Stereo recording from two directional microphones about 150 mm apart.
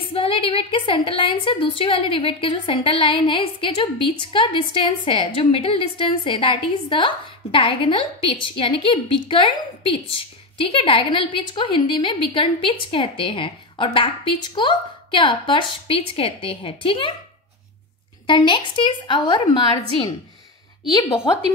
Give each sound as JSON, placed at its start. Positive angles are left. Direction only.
{"t": 0.1, "sound": "a woman's voice", "side_deg": 35}
{"t": 18.2, "sound": "a woman's voice", "side_deg": 35}